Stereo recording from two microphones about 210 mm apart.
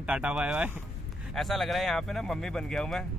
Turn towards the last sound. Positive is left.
turn(degrees=0)  # may be behind; listen again after turning